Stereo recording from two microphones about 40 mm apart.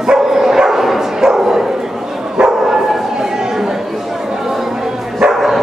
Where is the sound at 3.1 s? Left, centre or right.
Centre.